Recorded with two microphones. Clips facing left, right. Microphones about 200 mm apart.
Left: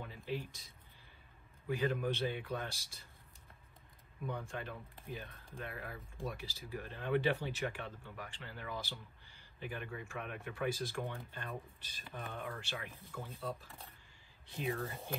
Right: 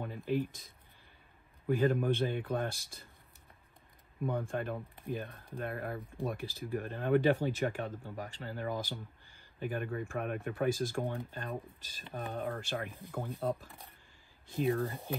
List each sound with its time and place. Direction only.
0.0 s a sound: 50° right (ahead or behind)
1.7 s speech: 50° right (ahead or behind)
4.3 s speech: 50° right (ahead or behind)